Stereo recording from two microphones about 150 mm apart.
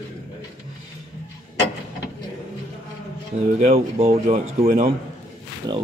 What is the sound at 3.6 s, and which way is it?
Speech, 45° right (ahead or behind).